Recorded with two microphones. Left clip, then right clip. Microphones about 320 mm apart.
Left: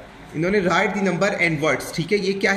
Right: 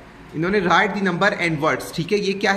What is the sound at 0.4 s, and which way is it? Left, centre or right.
Speech, centre.